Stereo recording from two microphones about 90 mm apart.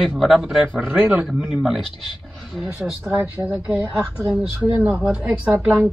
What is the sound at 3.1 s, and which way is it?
Speech, 15° right (ahead or behind).